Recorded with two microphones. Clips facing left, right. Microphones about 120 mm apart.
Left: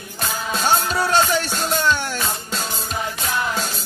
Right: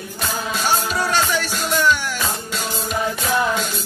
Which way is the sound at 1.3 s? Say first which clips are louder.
Left 1 dB; 30° left (ahead or behind).